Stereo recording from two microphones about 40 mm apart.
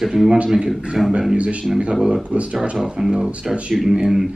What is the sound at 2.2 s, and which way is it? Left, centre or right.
Speech, right.